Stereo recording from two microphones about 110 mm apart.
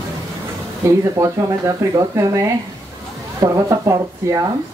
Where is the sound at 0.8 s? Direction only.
30° right (ahead or behind).